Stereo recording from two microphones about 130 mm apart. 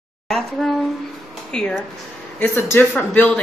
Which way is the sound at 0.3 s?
Centre (ahead or behind).